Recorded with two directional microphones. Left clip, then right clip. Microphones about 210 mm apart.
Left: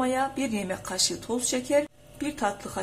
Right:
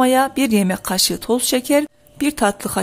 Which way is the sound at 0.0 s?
50° right (ahead or behind).